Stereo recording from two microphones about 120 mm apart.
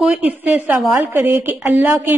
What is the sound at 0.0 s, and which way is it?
A woman's voice, 10° right (ahead or behind).